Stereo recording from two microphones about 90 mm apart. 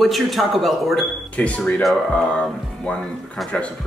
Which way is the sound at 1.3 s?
15° left (ahead or behind).